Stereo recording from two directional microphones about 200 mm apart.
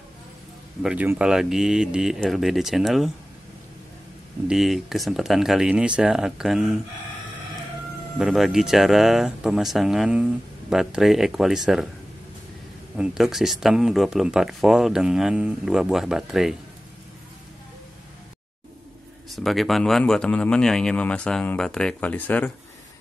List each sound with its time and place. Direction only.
0.8 s speech: 5° right (ahead or behind)
4.5 s speech: centre (ahead or behind)
8.2 s speech: centre (ahead or behind)
12.9 s speech: 5° right (ahead or behind)
19.2 s speech: centre (ahead or behind)